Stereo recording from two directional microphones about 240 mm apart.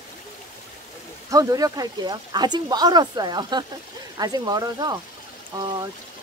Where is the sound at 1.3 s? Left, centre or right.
Centre.